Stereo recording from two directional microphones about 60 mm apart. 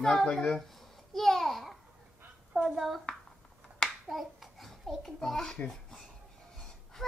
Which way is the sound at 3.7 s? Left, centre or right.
Centre.